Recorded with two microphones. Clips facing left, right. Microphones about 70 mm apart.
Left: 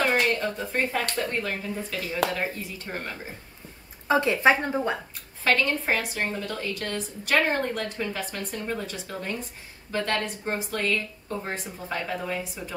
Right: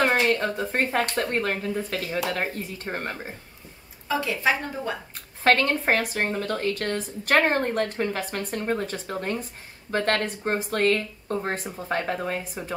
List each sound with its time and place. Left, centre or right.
0.1 s speech: right
4.1 s speech: left
5.1 s speech: right